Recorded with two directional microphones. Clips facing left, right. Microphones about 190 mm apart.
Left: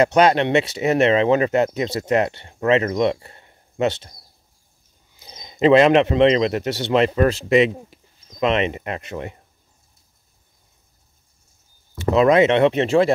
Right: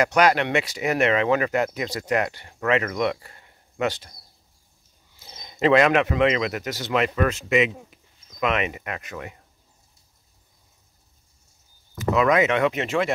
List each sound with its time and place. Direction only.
0.0 s speech: 25° left (ahead or behind)
5.2 s speech: 15° left (ahead or behind)
12.0 s speech: 30° left (ahead or behind)